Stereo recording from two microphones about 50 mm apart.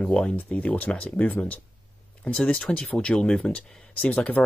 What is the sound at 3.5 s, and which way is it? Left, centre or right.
Speech, left.